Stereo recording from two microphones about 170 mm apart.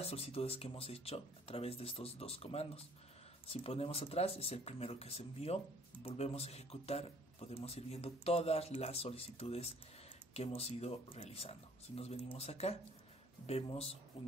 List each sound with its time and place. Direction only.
0.0 s a man's voice: 35° left (ahead or behind)